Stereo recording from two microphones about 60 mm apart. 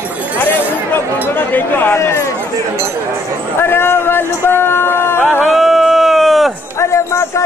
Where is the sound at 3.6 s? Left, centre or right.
Left.